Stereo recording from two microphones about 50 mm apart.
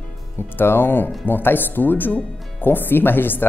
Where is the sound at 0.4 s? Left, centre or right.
Left.